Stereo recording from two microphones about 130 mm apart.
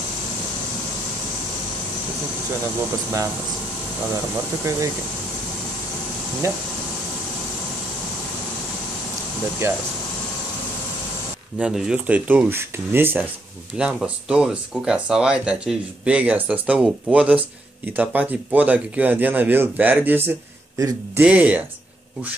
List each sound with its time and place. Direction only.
4.6 s speech: 25° right (ahead or behind)
6.4 s speech: 20° right (ahead or behind)
9.6 s speech: 15° right (ahead or behind)
11.5 s speech: 10° right (ahead or behind)